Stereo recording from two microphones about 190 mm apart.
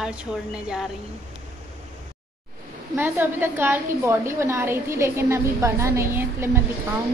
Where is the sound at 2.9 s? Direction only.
10° right (ahead or behind).